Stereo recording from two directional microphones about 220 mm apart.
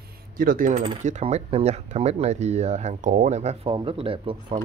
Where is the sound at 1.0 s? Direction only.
30° right (ahead or behind).